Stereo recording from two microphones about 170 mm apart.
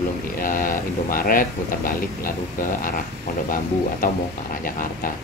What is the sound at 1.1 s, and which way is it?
Speech, 55° left (ahead or behind).